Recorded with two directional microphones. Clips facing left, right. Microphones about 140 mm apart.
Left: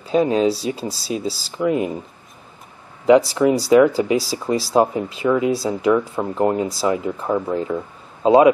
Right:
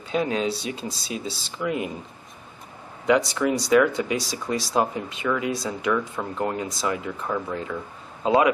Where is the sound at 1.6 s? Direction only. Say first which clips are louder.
Left 7 dB; 35° left (ahead or behind).